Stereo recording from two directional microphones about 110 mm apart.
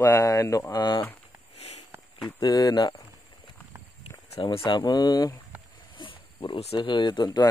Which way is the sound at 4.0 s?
60° left (ahead or behind).